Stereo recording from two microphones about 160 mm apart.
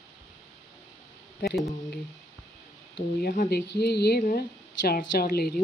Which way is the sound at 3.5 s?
90° left.